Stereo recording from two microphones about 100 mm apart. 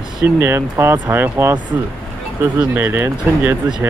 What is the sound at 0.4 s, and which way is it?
Speech, 25° right (ahead or behind).